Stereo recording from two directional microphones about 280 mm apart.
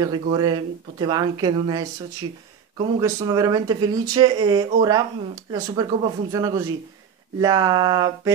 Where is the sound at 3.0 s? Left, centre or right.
Centre.